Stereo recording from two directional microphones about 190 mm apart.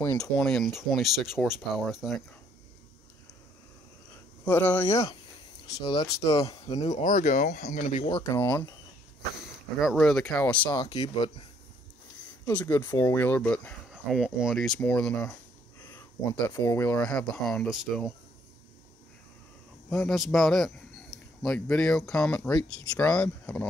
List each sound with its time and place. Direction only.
0.0 s speech: 10° left (ahead or behind)
4.5 s speech: 10° left (ahead or behind)
6.7 s speech: 35° left (ahead or behind)
7.5 s speech: 55° left (ahead or behind)
8.1 s speech: 15° left (ahead or behind)
9.8 s speech: centre (ahead or behind)
10.7 s speech: 20° left (ahead or behind)
12.4 s speech: 10° left (ahead or behind)
16.4 s speech: 15° left (ahead or behind)
19.9 s a man's voice: centre (ahead or behind)